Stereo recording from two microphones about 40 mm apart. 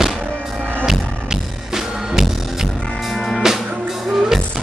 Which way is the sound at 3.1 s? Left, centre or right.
Centre.